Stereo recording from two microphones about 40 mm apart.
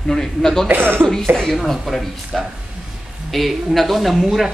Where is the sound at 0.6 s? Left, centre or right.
Right.